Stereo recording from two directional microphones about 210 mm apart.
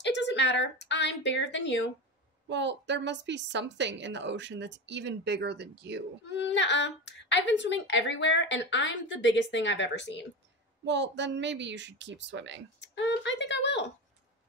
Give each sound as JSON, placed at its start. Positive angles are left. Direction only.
{"t": 0.0, "sound": "a sound", "side_deg": 55}
{"t": 2.4, "sound": "a woman's voice", "side_deg": -60}
{"t": 6.2, "sound": "a woman's voice", "side_deg": 55}
{"t": 10.9, "sound": "a woman's voice", "side_deg": -60}
{"t": 12.8, "sound": "speech", "side_deg": 60}